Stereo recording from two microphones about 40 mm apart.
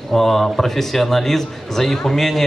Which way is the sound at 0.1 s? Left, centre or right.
Centre.